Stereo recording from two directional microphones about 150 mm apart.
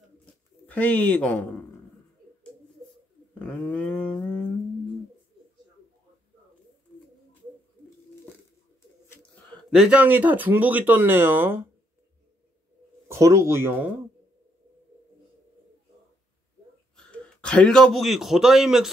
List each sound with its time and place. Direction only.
0.7 s speech: 10° left (ahead or behind)
3.3 s a sound: 10° left (ahead or behind)
9.1 s speech: 5° left (ahead or behind); by 11.6 s 15° right (ahead or behind)
13.1 s speech: 20° right (ahead or behind)
16.9 s a man's voice: 5° left (ahead or behind)